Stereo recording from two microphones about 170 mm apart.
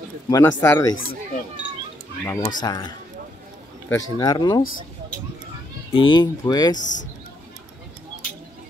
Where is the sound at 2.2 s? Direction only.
20° left (ahead or behind).